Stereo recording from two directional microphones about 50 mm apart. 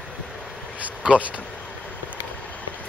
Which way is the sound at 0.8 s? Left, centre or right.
Right.